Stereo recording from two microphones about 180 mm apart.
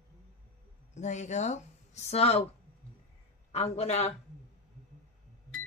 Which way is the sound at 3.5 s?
35° left (ahead or behind).